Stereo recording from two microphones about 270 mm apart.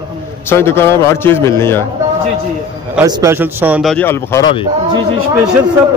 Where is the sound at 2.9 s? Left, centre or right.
Centre.